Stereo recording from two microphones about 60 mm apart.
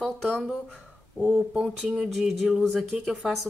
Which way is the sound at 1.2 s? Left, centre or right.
Centre.